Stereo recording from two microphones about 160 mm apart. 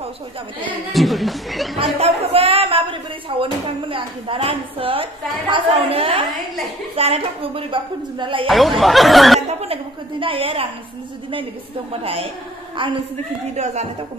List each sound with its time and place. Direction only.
0.7 s speech: centre (ahead or behind)
2.0 s a sound: 40° right (ahead or behind)
3.9 s a woman's voice: 35° right (ahead or behind)
8.5 s speech: centre (ahead or behind)
9.5 s a woman's voice: 40° right (ahead or behind)
12.0 s a woman's voice: 35° right (ahead or behind)
13.6 s speech: 45° right (ahead or behind)